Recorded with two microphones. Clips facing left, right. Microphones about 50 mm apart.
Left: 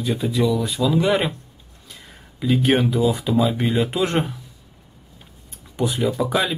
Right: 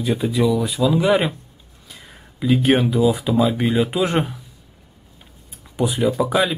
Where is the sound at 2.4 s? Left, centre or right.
Centre.